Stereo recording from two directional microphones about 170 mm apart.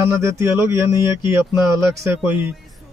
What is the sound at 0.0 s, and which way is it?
Speech, 15° right (ahead or behind).